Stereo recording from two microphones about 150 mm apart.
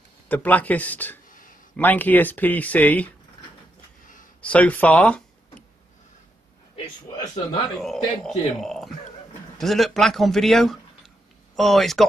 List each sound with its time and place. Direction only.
0.3 s speech: 10° left (ahead or behind)
4.4 s speech: 10° left (ahead or behind)
7.8 s a man's voice: centre (ahead or behind)